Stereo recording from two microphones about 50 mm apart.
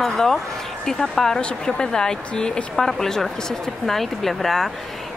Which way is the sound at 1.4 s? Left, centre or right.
Centre.